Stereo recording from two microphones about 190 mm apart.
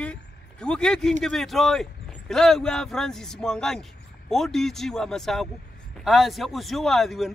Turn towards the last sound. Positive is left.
turn(degrees=0)  # may be behind; listen again after turning